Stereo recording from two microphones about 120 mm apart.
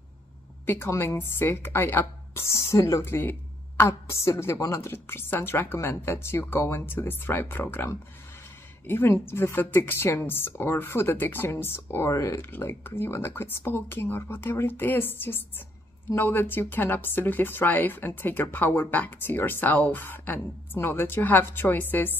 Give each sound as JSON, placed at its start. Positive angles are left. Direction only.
{"t": 0.7, "sound": "a woman's voice", "side_deg": 20}